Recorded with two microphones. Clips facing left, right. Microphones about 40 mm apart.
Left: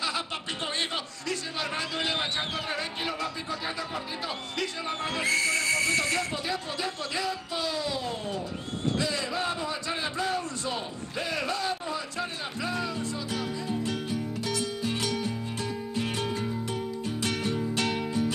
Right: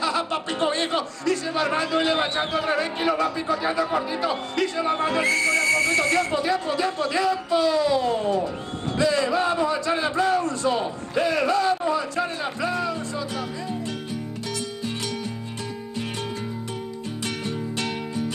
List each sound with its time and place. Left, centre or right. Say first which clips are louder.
0.6 s a man's voice: right 8 dB; centre
5.5 s speech: right 5 dB; centre
6.1 s a man's voice: right 8 dB; right
11.4 s speech: right 9 dB; centre
17.2 s music: even; centre